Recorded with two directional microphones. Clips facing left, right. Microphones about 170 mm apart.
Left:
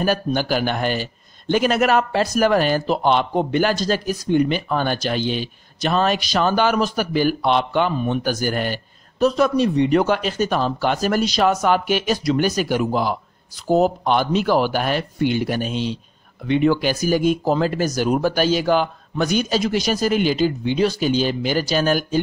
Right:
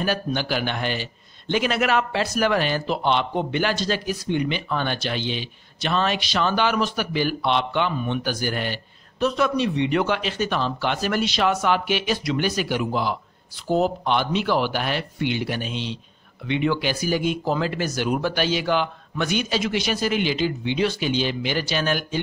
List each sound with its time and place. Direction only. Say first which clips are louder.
0.0 s a man's voice: left 4 dB; 45° left (ahead or behind)